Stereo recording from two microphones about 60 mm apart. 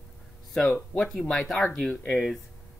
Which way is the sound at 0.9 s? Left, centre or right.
Centre.